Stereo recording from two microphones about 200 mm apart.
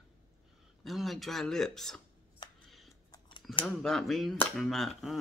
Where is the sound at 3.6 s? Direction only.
Centre (ahead or behind).